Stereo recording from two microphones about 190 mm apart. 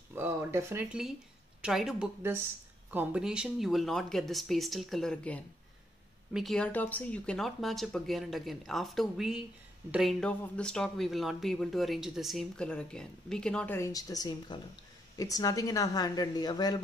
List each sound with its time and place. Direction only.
0.1 s speech: 15° right (ahead or behind)
1.6 s speech: centre (ahead or behind); by 16.8 s 20° left (ahead or behind)